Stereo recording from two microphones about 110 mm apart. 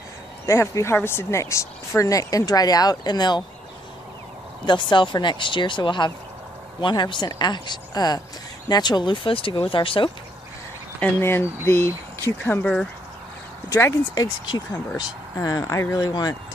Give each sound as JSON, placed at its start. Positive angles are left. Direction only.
{"t": 0.5, "sound": "speech", "side_deg": 25}
{"t": 4.6, "sound": "speech", "side_deg": 45}
{"t": 11.0, "sound": "speech", "side_deg": 20}